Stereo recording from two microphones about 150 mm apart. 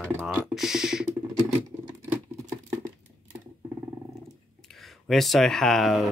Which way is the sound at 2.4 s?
20° right (ahead or behind).